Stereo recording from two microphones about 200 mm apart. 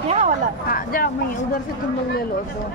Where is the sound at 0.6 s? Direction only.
45° left (ahead or behind).